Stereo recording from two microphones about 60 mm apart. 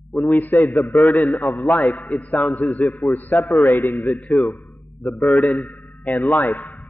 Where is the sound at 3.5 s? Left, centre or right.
Left.